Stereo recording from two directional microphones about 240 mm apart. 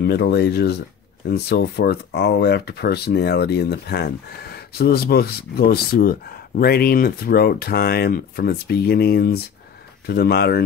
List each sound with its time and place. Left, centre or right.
0.0 s speech: left